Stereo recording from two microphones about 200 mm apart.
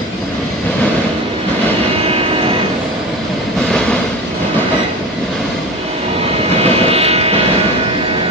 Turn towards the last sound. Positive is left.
turn(degrees=-30)  # may be behind; listen again after turning